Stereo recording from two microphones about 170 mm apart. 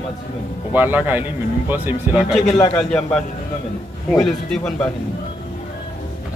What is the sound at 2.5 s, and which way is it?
Speech, 20° left (ahead or behind).